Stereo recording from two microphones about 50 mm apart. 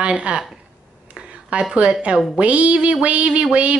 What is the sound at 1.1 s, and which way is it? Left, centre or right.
Speech, centre.